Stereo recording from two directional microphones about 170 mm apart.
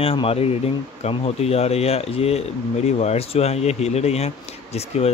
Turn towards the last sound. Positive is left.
turn(degrees=40)  # may be behind; listen again after turning